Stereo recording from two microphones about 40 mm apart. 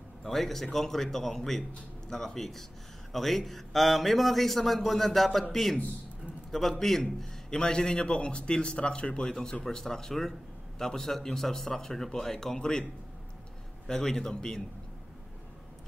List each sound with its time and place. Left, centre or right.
0.2 s a man's voice: centre
6.8 s speech: centre
13.8 s speech: centre